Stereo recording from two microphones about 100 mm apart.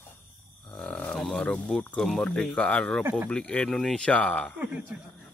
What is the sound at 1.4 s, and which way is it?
Mantra, 10° left (ahead or behind).